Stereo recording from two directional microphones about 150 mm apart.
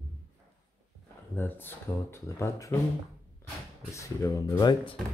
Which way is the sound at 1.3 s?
15° left (ahead or behind).